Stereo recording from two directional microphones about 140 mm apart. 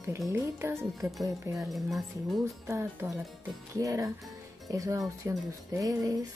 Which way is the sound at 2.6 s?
20° right (ahead or behind).